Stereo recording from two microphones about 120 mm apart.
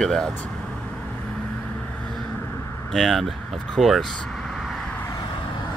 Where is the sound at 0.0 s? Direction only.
5° left (ahead or behind).